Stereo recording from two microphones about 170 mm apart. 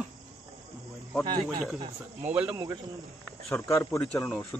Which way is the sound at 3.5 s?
15° left (ahead or behind).